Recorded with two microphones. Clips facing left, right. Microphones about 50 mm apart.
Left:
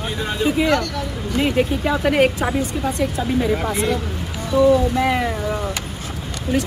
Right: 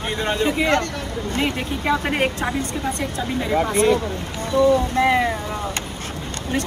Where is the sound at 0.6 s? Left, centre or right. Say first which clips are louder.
Left 1 dB; right.